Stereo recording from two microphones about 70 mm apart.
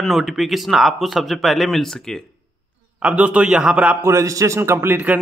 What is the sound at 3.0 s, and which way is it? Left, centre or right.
Speech, centre.